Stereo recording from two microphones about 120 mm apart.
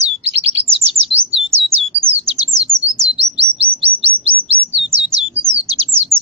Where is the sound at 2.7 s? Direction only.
20° right (ahead or behind).